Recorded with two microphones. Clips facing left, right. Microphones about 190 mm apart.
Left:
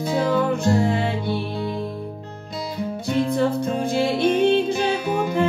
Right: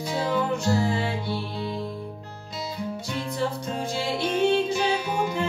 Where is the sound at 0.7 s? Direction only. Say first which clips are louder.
Left 4 dB; 55° left (ahead or behind).